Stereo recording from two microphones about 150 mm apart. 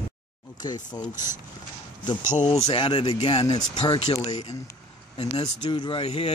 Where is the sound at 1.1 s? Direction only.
60° left (ahead or behind).